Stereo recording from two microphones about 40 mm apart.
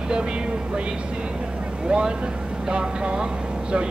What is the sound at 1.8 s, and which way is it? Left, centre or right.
Speech, right.